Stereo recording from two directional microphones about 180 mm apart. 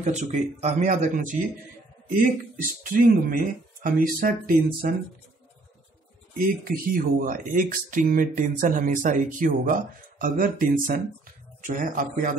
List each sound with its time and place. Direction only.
0.0 s speech: 40° right (ahead or behind)
2.8 s speech: 50° right (ahead or behind)
6.3 s speech: 50° right (ahead or behind)